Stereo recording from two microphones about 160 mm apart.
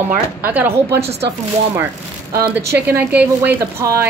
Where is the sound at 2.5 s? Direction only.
15° right (ahead or behind).